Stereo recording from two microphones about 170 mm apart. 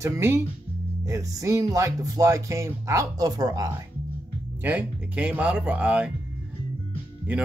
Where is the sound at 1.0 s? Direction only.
15° right (ahead or behind).